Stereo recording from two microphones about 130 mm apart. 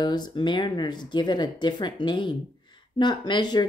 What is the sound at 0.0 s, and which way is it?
Speech, 35° left (ahead or behind).